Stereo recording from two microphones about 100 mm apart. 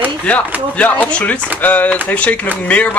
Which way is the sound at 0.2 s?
15° left (ahead or behind).